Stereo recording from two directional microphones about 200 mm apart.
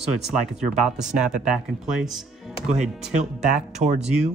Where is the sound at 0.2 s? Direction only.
5° right (ahead or behind).